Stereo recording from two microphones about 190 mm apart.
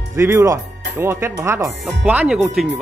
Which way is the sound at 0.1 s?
15° right (ahead or behind).